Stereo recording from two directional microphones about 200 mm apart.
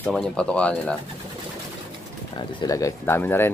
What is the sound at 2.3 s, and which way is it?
Speech, 15° left (ahead or behind).